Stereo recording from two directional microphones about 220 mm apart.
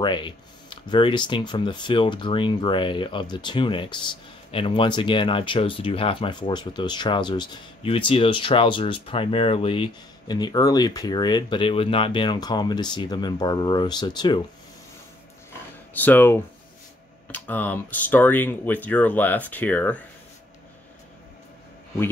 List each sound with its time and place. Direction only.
0.0 s speech: 20° left (ahead or behind)
15.9 s speech: 10° left (ahead or behind)